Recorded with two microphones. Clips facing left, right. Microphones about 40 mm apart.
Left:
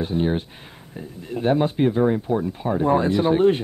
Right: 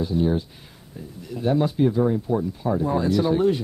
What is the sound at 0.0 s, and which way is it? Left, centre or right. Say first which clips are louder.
Speech: even; left.